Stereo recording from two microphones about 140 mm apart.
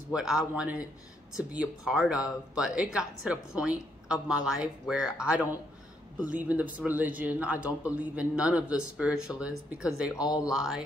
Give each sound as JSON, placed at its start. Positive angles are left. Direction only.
{"t": 0.1, "sound": "speech", "side_deg": -5}
{"t": 10.2, "sound": "speech", "side_deg": 30}
{"t": 10.5, "sound": "speech", "side_deg": -5}